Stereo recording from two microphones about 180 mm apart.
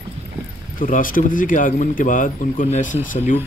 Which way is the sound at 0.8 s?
50° left (ahead or behind).